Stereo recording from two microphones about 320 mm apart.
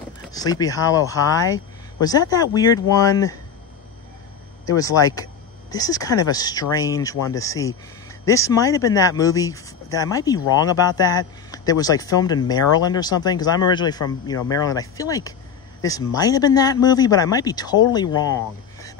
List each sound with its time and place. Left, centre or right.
0.3 s speech: centre
4.6 s speech: centre